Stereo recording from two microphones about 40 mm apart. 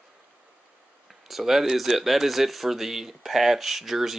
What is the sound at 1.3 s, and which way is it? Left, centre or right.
Speech, centre.